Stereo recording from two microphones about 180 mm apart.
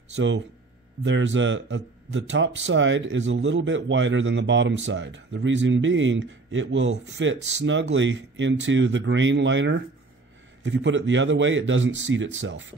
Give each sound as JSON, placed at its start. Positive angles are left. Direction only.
{"t": 0.1, "sound": "a man's voice", "side_deg": -90}